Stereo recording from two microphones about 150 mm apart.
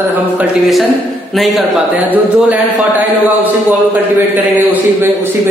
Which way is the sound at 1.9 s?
10° right (ahead or behind).